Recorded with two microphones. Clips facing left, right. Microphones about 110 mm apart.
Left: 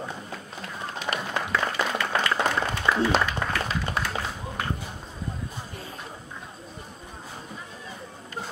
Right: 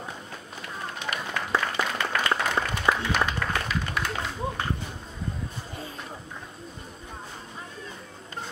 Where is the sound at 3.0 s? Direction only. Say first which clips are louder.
Left 3 dB; 30° left (ahead or behind).